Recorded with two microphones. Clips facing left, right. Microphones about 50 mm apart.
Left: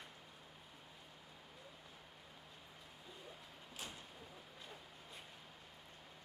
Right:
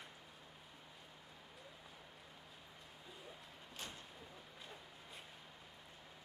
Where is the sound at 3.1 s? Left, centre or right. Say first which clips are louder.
Even; centre.